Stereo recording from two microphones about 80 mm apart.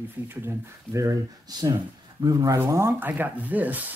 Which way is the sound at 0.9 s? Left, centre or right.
Right.